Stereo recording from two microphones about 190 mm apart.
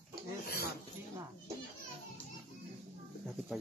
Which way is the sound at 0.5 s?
55° left (ahead or behind).